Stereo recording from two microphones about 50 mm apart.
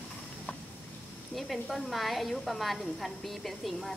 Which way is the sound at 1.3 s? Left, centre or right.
Centre.